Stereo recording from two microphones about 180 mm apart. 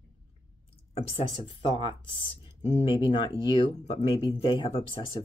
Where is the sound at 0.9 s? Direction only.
30° left (ahead or behind).